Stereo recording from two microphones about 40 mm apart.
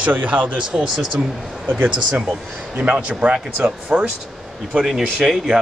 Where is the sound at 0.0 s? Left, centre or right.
Right.